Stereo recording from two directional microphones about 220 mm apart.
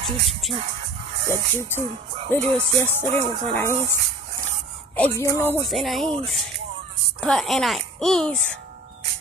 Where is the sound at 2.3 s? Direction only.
10° left (ahead or behind).